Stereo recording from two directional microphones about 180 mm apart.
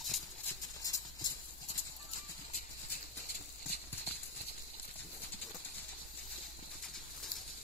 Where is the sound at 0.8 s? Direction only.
20° left (ahead or behind).